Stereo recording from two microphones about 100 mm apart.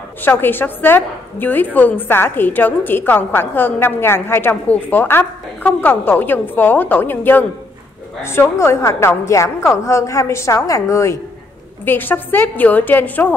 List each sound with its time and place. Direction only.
0.2 s a woman's voice: 20° left (ahead or behind)
11.8 s a woman's voice: 20° left (ahead or behind)